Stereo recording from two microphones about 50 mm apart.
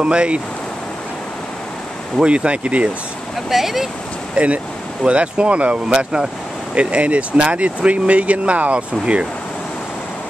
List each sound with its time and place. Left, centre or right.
0.0 s speech: centre
2.1 s speech: right
3.4 s speech: centre
4.4 s speech: right